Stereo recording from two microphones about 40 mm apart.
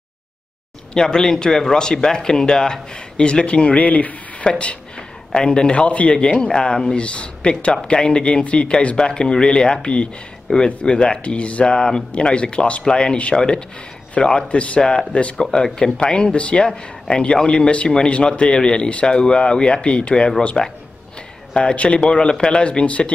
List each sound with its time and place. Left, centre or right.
0.9 s speech: centre
3.8 s speech: left
4.5 s speech: left
6.1 s speech: left
21.5 s speech: left